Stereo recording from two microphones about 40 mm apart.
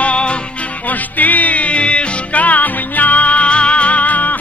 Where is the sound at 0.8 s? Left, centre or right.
Left.